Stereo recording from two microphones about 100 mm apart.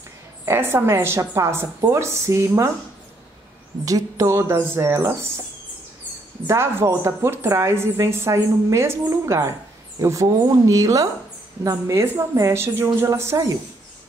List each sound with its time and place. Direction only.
0.5 s a woman's voice: 20° right (ahead or behind)
3.8 s a woman's voice: 35° right (ahead or behind)
6.4 s a woman's voice: 25° right (ahead or behind)